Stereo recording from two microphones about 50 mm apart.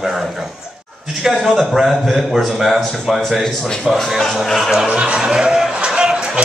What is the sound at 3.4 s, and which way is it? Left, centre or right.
A man's voice, centre.